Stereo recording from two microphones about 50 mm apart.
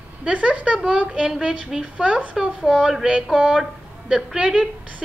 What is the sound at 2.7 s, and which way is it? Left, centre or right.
A woman's voice, centre.